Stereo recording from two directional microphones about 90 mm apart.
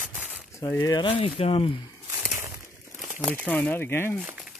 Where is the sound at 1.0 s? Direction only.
90° left.